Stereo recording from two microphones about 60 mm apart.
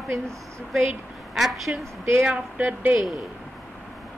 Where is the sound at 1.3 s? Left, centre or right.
Centre.